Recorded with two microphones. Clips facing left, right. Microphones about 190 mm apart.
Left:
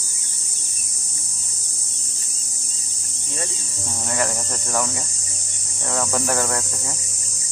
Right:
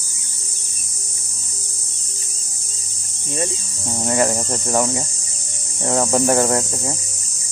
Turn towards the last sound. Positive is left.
turn(degrees=-25)  # may be behind; listen again after turning